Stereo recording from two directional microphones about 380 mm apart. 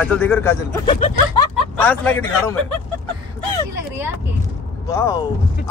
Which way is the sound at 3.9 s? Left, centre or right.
Centre.